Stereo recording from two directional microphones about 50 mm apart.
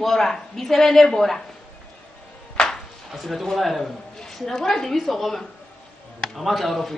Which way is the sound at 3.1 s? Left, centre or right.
Centre.